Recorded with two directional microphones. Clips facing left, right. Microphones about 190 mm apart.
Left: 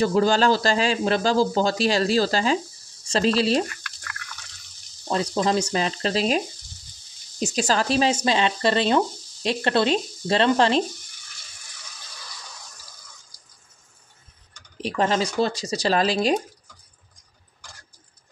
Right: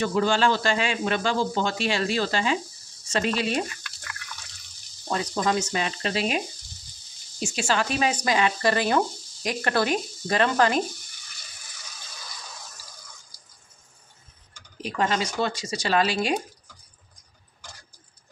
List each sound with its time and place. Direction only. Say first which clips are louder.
0.0 s speech: left 3 dB; 35° left (ahead or behind)
5.1 s speech: left 3 dB; 30° left (ahead or behind)
14.8 s speech: left 3 dB; 35° left (ahead or behind)